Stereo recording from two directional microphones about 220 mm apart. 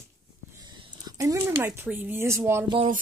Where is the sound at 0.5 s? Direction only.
20° right (ahead or behind).